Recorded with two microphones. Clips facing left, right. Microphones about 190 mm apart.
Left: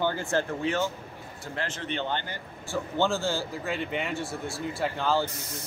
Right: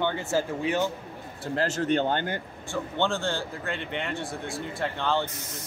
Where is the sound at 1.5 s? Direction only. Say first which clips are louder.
Right 8 dB; 40° right (ahead or behind).